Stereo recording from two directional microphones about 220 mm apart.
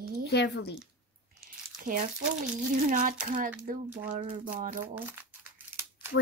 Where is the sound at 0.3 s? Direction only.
50° left (ahead or behind).